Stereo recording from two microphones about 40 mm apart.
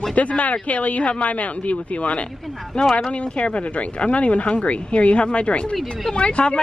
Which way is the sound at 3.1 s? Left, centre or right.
Left.